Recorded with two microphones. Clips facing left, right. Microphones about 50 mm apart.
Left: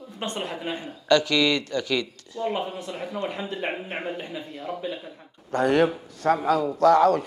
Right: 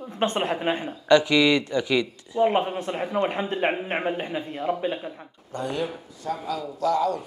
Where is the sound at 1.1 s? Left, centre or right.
Centre.